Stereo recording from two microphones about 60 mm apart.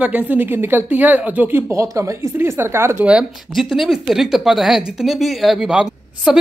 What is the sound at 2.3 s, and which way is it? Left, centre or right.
Speech, right.